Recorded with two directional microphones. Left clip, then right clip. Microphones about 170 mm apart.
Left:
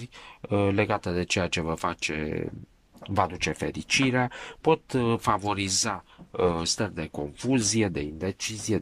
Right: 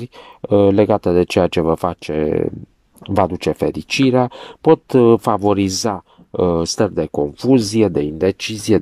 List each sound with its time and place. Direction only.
0.4 s speech: 35° right (ahead or behind)
4.8 s speech: 45° right (ahead or behind); by 7.9 s 25° right (ahead or behind)
8.2 s speech: 60° right (ahead or behind)